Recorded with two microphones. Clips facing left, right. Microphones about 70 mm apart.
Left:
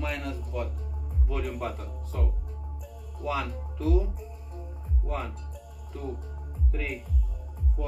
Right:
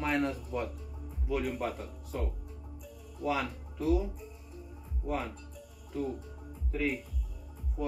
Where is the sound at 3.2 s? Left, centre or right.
Centre.